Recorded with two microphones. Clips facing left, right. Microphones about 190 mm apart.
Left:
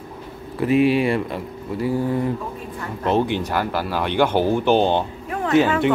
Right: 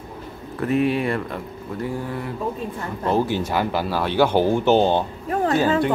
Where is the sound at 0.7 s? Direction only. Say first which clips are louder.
Left 3 dB; 90° left.